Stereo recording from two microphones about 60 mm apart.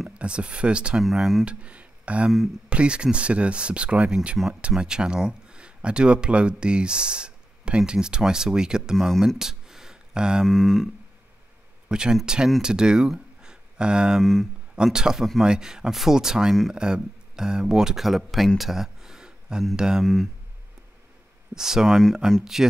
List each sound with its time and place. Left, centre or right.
0.2 s speech: centre
1.0 s speech: centre
1.4 s speech: centre
8.9 s speech: centre
9.4 s a sound: centre
10.4 s speech: centre
11.9 s speech: centre
14.2 s speech: centre
14.8 s speech: centre
18.6 s a sound: centre
19.7 s speech: centre
21.5 s speech: centre